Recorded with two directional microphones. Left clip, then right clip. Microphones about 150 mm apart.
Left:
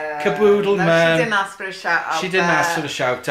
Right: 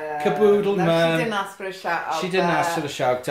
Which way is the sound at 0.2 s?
10° left (ahead or behind).